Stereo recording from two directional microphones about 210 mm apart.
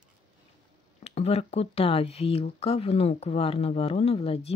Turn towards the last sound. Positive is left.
turn(degrees=30)  # may be behind; listen again after turning